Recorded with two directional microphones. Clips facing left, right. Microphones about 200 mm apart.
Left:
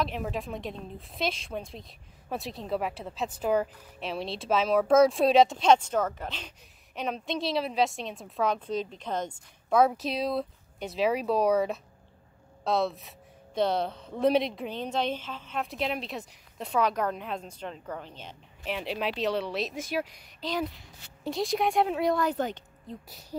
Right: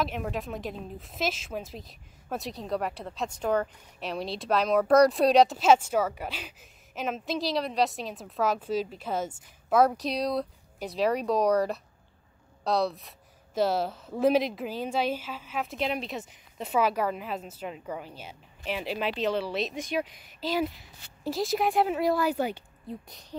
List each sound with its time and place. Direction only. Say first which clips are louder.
0.0 s a woman's voice: even; centre (ahead or behind)